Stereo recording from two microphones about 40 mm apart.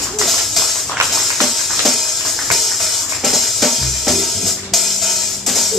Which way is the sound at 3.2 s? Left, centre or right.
Centre.